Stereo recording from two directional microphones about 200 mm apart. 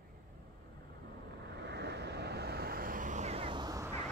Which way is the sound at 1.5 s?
55° right (ahead or behind).